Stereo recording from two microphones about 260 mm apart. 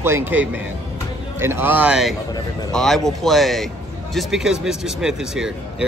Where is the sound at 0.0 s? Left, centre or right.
Centre.